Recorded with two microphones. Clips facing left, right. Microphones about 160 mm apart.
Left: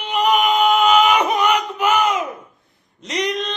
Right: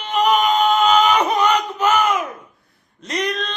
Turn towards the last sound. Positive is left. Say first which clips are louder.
# left 1 dB
turn(degrees=15)  # may be behind; listen again after turning